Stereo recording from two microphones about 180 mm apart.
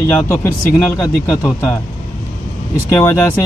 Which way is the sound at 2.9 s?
15° left (ahead or behind).